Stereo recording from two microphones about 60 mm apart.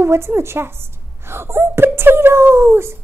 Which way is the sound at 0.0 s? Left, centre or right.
Right.